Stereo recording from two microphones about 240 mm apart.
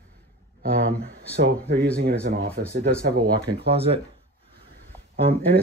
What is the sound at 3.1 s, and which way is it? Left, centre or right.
Speech, right.